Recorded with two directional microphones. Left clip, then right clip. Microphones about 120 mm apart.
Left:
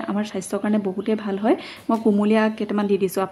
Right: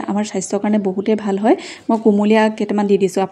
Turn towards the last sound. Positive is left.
turn(degrees=-35)  # may be behind; listen again after turning